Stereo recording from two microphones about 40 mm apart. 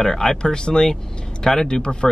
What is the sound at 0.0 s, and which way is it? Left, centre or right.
Speech, centre.